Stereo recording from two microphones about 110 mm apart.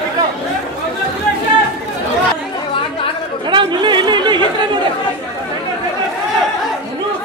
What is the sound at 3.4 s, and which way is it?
Chatter, 45° right (ahead or behind).